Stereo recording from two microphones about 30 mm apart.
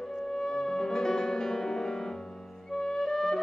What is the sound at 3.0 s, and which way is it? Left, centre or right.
Music, left.